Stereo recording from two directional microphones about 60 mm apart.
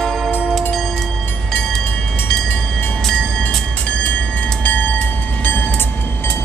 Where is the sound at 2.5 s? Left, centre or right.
Left.